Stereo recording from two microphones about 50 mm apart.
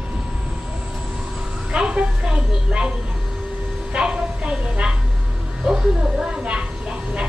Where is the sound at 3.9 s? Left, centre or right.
Centre.